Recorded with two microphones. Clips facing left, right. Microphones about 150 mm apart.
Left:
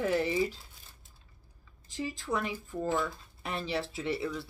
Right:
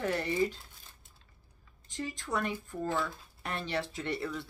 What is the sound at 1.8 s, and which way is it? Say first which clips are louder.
Speech: left 3 dB; 5° left (ahead or behind).